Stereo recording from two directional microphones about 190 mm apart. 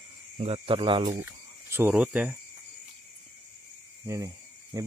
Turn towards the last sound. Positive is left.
turn(degrees=-15)  # may be behind; listen again after turning